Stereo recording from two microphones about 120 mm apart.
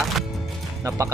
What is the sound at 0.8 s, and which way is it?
Speech, 25° right (ahead or behind).